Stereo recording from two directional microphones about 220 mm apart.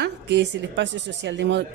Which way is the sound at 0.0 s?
50° right (ahead or behind).